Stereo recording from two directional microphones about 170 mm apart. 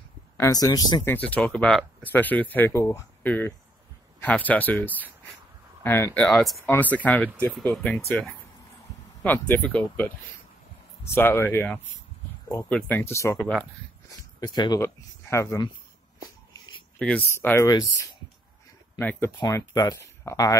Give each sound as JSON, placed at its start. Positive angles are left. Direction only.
{"t": 0.4, "sound": "speech", "side_deg": 20}
{"t": 1.0, "sound": "speech", "side_deg": 10}
{"t": 11.1, "sound": "speech", "side_deg": 15}
{"t": 17.0, "sound": "speech", "side_deg": 10}